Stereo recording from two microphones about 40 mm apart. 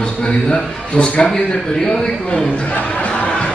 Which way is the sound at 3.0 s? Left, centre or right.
Left.